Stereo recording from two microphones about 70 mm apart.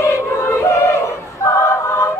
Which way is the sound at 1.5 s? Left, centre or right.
Left.